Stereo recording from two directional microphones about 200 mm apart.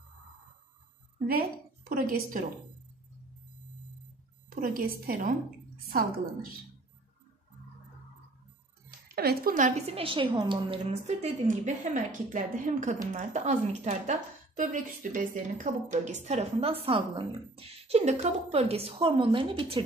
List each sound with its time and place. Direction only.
1.9 s a woman's voice: 45° right (ahead or behind)
4.6 s a woman's voice: 45° right (ahead or behind)
9.1 s speech: 50° right (ahead or behind); by 19.8 s 25° right (ahead or behind)